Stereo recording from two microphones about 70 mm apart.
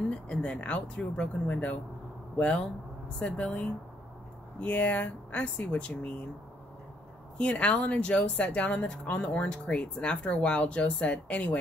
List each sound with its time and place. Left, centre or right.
0.3 s speech: centre
7.3 s speech: centre